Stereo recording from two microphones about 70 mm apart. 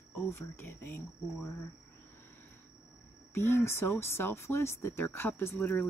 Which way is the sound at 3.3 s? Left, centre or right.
Left.